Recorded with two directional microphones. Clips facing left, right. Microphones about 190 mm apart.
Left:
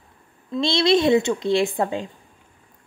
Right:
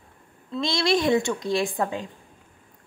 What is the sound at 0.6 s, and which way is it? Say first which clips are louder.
A woman's voice: left 5 dB; 25° left (ahead or behind).